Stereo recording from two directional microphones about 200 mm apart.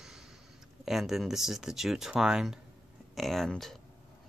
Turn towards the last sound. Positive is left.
turn(degrees=0)  # may be behind; listen again after turning